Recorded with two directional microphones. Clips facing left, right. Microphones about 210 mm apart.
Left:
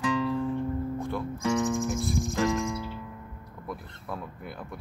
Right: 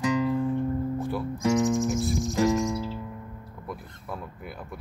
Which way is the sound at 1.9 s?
Centre (ahead or behind).